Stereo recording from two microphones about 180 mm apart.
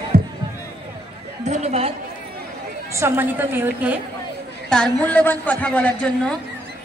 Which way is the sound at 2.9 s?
15° right (ahead or behind).